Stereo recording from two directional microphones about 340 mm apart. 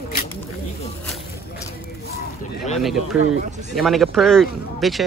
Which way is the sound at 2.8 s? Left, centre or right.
Centre.